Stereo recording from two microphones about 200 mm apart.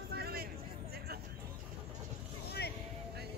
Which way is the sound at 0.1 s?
50° right (ahead or behind).